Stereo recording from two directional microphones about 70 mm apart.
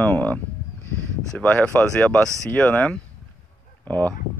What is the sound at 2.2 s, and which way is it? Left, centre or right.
Speech, right.